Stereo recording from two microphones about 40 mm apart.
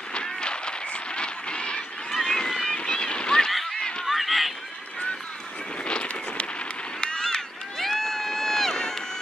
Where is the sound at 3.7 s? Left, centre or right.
Left.